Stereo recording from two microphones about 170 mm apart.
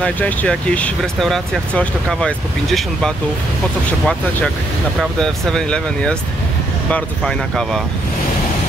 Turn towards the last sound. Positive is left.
turn(degrees=5)  # may be behind; listen again after turning